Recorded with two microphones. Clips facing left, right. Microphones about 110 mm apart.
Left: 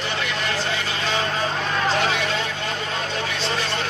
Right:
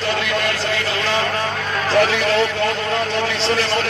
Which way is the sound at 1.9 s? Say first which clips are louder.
Right 7 dB; 90° right.